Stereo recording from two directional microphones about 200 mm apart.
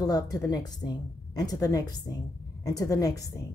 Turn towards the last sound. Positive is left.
turn(degrees=15)  # may be behind; listen again after turning